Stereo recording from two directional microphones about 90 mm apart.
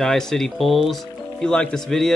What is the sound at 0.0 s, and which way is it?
Speech, 5° left (ahead or behind).